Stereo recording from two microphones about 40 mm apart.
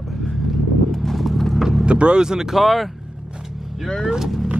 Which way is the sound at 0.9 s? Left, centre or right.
Centre.